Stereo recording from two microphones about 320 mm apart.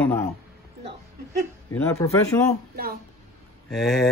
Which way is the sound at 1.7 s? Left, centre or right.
Centre.